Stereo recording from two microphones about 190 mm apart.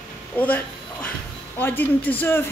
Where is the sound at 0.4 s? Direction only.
10° left (ahead or behind).